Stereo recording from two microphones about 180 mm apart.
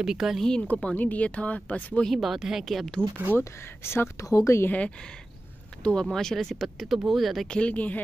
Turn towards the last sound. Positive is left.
turn(degrees=10)  # may be behind; listen again after turning